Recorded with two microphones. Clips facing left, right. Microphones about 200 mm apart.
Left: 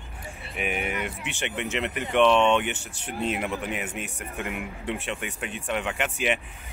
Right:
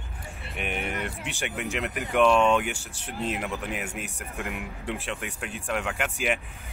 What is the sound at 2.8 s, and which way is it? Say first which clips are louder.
Speech: left 2 dB; 30° right (ahead or behind).